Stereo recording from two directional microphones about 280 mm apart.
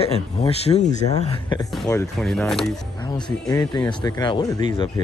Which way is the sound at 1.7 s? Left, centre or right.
Centre.